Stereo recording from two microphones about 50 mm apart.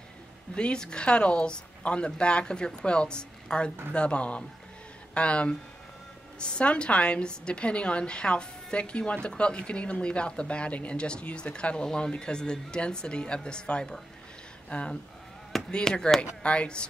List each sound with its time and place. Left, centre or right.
0.6 s a woman's voice: centre